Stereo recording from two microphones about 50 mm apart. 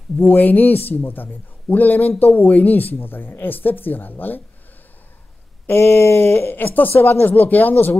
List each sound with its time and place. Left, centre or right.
0.2 s a man's voice: left
5.7 s a man's voice: left